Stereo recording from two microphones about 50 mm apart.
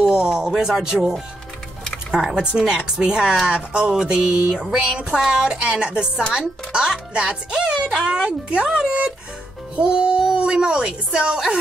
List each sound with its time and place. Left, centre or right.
0.0 s a sound: centre
0.6 s a woman's voice: centre
2.0 s a woman's voice: centre